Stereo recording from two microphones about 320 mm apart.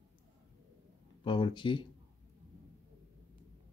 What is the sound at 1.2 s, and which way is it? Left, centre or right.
Speech, centre.